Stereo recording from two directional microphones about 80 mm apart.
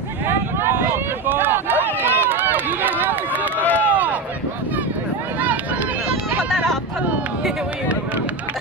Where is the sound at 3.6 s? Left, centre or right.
Left.